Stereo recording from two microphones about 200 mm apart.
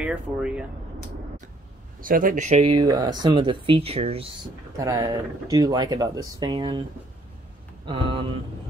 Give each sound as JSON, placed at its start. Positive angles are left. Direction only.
{"t": 0.0, "sound": "speech", "side_deg": -5}
{"t": 2.0, "sound": "speech", "side_deg": -45}
{"t": 2.8, "sound": "speech", "side_deg": -20}
{"t": 4.7, "sound": "speech", "side_deg": -15}
{"t": 7.8, "sound": "speech", "side_deg": -25}